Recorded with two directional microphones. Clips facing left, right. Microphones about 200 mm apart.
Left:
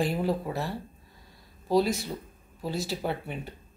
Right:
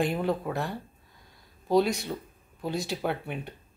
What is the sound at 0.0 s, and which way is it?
Speech, 5° left (ahead or behind).